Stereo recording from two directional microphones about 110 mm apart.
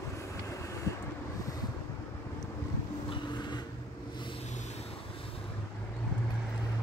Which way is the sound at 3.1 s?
45° left (ahead or behind).